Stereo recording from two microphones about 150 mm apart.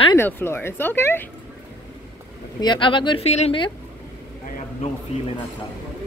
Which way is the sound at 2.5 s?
30° left (ahead or behind).